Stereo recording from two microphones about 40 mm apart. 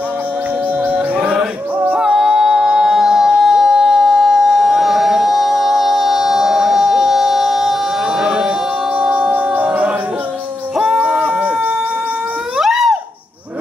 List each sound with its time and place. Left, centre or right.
0.9 s music: right
11.2 s chicken: right
12.5 s a sound: centre